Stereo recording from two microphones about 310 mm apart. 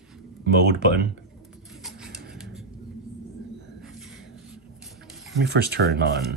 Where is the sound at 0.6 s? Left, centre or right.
Right.